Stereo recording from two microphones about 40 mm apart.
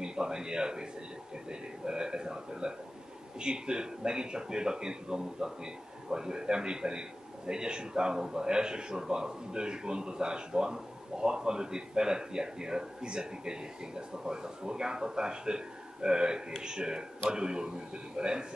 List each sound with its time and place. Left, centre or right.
0.0 s a man's voice: centre